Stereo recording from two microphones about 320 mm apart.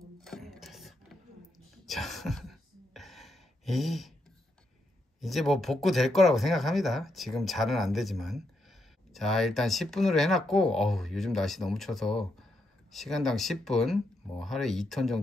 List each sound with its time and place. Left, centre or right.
0.2 s a sound: centre
1.9 s gasp: centre
5.2 s speech: centre